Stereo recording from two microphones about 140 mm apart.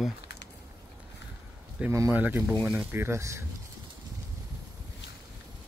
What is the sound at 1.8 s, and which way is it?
Speech, 10° right (ahead or behind).